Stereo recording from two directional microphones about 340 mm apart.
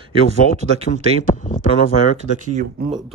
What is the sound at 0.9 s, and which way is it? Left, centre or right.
Speech, left.